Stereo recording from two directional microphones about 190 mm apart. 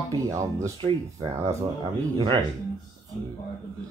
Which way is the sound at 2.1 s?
25° right (ahead or behind).